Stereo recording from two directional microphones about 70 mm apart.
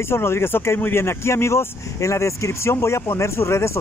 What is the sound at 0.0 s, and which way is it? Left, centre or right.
Speech, left.